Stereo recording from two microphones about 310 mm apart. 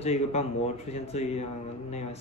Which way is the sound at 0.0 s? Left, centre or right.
Left.